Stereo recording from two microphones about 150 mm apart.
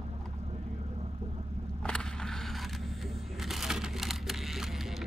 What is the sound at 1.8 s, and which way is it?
Vehicle, 5° left (ahead or behind).